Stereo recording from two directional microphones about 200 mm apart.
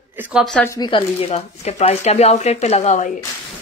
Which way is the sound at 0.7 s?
25° left (ahead or behind).